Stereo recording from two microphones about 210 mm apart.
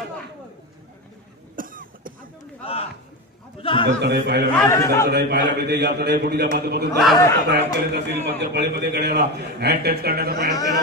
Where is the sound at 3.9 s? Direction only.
50° right (ahead or behind).